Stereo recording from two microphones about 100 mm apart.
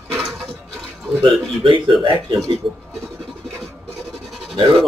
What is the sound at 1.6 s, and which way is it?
Speech, 55° right (ahead or behind).